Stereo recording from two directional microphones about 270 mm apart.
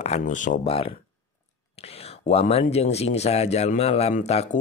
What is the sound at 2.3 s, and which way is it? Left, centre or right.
Speech, left.